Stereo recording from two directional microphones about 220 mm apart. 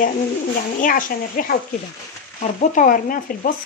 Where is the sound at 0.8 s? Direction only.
40° left (ahead or behind).